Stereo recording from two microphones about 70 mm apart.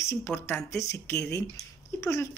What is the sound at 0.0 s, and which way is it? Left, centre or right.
Speech, left.